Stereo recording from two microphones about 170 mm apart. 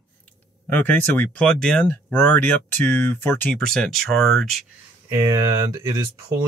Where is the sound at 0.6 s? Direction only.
10° left (ahead or behind).